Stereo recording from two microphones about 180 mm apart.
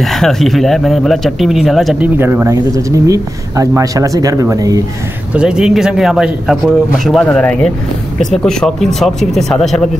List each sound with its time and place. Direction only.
0.0 s a man's voice: centre (ahead or behind)
2.1 s speech: 10° right (ahead or behind)
5.3 s a man's voice: 5° right (ahead or behind)